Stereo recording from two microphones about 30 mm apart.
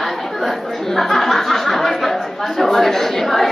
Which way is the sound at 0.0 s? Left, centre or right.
Centre.